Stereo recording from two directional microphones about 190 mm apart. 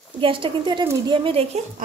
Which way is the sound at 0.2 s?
25° right (ahead or behind).